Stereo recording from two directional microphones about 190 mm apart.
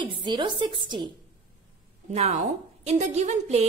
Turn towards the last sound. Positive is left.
turn(degrees=-35)  # may be behind; listen again after turning